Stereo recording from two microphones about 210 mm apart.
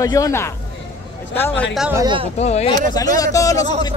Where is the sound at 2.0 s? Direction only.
25° right (ahead or behind).